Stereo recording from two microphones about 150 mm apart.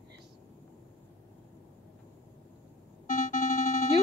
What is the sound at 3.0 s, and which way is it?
Music, 55° left (ahead or behind).